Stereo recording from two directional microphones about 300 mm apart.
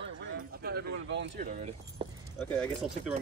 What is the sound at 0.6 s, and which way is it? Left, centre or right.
Speech, right.